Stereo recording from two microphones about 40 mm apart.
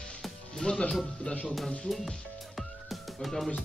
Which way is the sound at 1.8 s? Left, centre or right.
Centre.